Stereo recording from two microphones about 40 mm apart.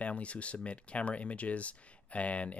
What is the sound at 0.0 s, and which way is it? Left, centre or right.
Speech, left.